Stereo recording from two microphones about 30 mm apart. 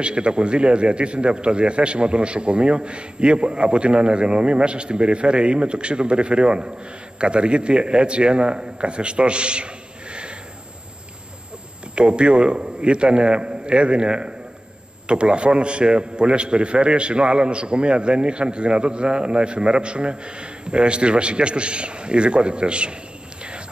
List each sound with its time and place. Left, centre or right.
0.0 s a man's voice: right
11.9 s a man's voice: right